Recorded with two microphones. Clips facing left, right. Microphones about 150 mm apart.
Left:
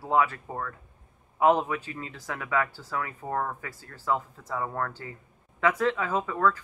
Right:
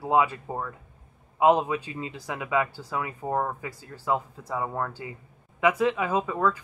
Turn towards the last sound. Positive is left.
turn(degrees=-15)  # may be behind; listen again after turning